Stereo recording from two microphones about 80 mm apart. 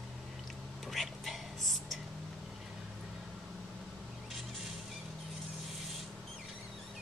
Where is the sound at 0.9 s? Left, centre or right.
Centre.